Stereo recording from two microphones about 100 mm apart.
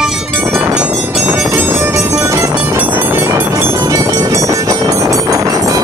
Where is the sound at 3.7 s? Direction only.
35° right (ahead or behind).